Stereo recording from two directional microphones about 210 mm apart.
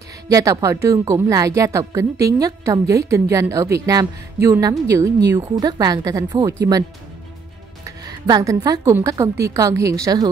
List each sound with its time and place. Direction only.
0.3 s a woman's voice: 15° right (ahead or behind)
8.0 s a woman's voice: 20° right (ahead or behind)